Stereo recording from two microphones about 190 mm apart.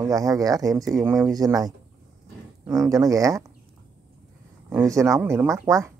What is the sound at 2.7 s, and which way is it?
Speech, 20° right (ahead or behind).